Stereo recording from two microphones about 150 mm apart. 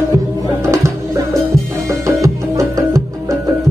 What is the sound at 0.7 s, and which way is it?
Music, 20° right (ahead or behind).